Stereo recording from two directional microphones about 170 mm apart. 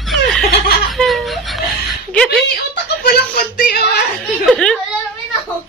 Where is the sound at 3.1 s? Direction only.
70° left (ahead or behind).